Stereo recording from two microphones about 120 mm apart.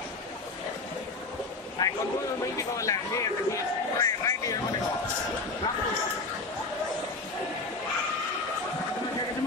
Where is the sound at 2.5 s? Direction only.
25° left (ahead or behind).